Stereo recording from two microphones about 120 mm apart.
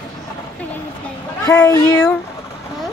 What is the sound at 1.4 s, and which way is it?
Speech, 30° left (ahead or behind).